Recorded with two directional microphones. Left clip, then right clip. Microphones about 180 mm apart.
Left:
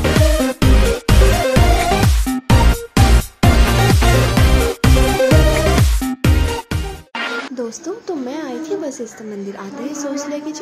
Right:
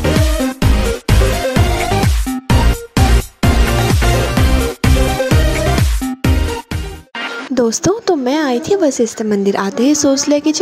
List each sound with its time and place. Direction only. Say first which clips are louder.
0.0 s music: even; centre (ahead or behind)
7.5 s speech: right 11 dB; 50° right (ahead or behind)